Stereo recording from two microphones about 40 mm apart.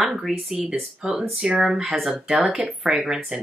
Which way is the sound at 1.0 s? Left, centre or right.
Centre.